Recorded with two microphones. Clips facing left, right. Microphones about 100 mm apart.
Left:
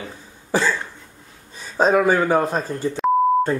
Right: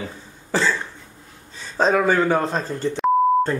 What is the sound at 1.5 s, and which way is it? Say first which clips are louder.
Speech: left 2 dB; 10° left (ahead or behind).